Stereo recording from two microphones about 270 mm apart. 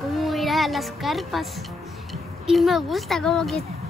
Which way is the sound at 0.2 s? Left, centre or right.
Centre.